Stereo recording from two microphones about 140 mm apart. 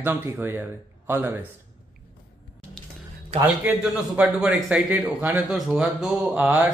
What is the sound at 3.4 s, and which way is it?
Speech, 10° right (ahead or behind).